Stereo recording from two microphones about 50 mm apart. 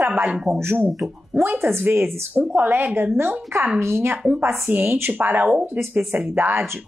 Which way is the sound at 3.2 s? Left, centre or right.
Right.